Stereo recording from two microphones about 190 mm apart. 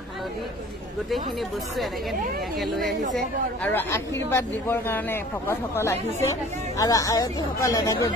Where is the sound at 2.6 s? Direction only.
Centre (ahead or behind).